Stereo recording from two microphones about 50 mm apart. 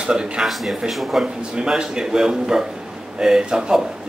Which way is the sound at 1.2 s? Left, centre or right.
Centre.